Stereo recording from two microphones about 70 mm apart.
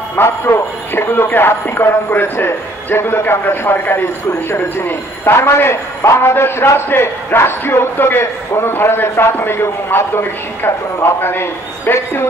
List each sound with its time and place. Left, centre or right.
0.1 s speech: left